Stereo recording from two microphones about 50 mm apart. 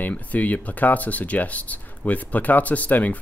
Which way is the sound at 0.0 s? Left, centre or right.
Left.